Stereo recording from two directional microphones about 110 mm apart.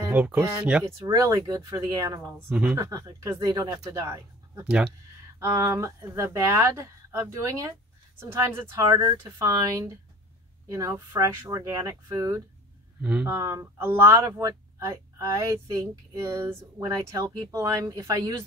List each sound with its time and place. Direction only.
0.1 s speech: 15° right (ahead or behind)
1.0 s speech: 30° right (ahead or behind)
2.2 s speech: 15° right (ahead or behind)
4.6 s speech: 10° right (ahead or behind)
5.4 s speech: 25° right (ahead or behind)
13.0 s speech: 10° right (ahead or behind)
13.3 s speech: 25° right (ahead or behind)